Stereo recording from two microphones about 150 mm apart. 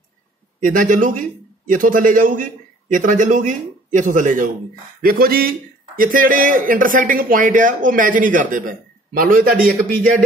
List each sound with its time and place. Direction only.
0.6 s a man's voice: 60° right (ahead or behind)
5.0 s a man's voice: 80° right